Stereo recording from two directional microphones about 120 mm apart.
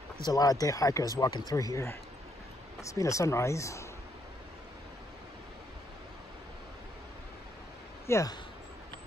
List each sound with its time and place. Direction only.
0.2 s speech: 30° left (ahead or behind)
8.1 s speech: 25° left (ahead or behind)